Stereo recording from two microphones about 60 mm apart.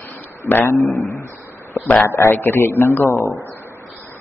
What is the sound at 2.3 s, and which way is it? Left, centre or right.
Speech, left.